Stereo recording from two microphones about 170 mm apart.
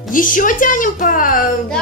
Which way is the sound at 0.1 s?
50° left (ahead or behind).